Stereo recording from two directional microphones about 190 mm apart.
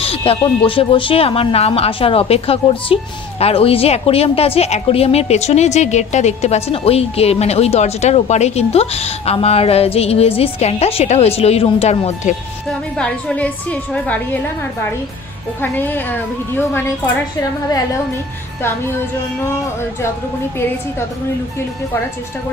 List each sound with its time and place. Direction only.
0.0 s speech: 30° left (ahead or behind)
12.9 s a woman's voice: 5° left (ahead or behind)
15.6 s a woman's voice: 10° left (ahead or behind)